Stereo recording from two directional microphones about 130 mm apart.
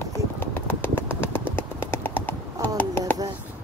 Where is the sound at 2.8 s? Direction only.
15° left (ahead or behind).